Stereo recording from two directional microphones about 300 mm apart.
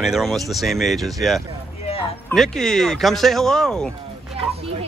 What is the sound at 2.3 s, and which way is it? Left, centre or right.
Speech, centre.